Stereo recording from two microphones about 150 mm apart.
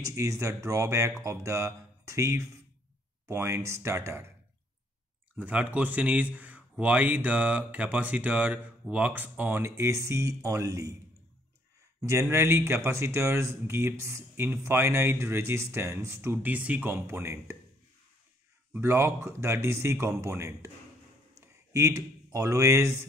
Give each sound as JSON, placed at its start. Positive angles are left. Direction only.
{"t": 0.0, "sound": "speech", "side_deg": -20}
{"t": 5.3, "sound": "speech", "side_deg": -10}
{"t": 12.1, "sound": "speech", "side_deg": -20}
{"t": 18.7, "sound": "speech", "side_deg": -15}